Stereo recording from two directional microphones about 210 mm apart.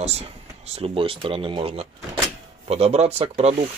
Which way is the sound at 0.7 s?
30° right (ahead or behind).